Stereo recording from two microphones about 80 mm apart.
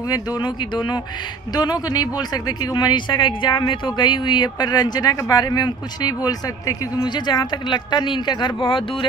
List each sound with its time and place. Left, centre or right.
0.1 s speech: left
1.5 s speech: left